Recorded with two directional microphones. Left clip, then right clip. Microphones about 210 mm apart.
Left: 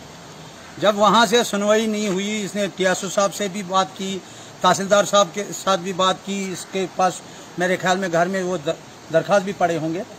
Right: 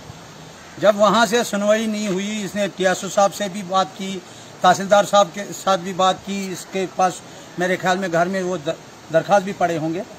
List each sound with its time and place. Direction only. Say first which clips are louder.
0.7 s a man's voice: right 1 dB; centre (ahead or behind)